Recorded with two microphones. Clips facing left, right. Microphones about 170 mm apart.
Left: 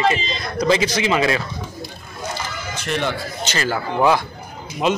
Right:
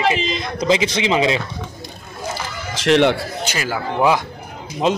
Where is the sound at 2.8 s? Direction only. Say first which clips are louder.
Right 10 dB; 75° right (ahead or behind).